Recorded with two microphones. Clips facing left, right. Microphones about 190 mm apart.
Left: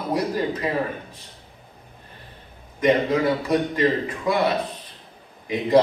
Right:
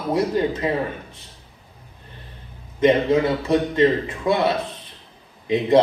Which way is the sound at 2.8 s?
25° right (ahead or behind).